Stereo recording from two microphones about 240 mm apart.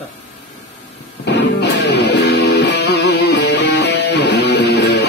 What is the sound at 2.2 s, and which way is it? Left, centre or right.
Music, left.